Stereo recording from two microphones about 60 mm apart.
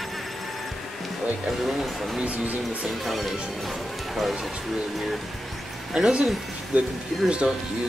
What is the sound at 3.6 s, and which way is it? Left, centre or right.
Music, centre.